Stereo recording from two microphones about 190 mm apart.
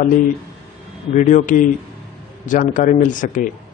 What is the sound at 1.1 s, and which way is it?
A man's voice, 40° left (ahead or behind).